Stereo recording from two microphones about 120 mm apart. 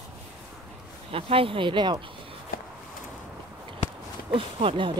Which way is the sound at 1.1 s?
50° right (ahead or behind).